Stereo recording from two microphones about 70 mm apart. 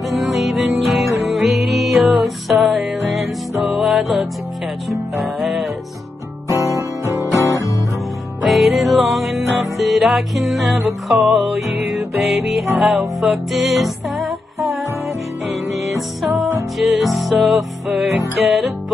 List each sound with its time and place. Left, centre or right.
0.1 s music: centre
6.6 s guitar: right
7.4 s guitar: left
8.5 s music: centre